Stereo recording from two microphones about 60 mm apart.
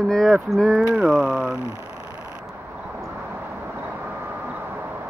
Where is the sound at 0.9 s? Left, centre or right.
Centre.